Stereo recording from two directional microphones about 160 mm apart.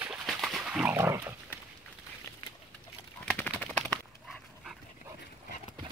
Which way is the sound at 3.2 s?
10° left (ahead or behind).